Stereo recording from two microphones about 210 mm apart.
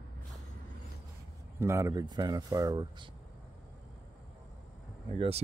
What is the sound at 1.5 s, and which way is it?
Speech, 15° right (ahead or behind).